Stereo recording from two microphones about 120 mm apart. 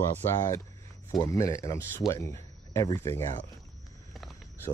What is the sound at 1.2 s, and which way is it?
Speech, 25° left (ahead or behind).